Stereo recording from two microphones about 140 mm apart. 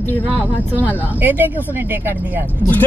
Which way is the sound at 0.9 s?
10° right (ahead or behind).